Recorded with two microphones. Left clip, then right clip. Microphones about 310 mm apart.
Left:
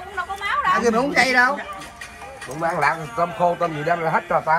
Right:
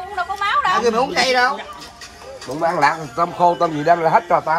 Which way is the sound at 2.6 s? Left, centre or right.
Right.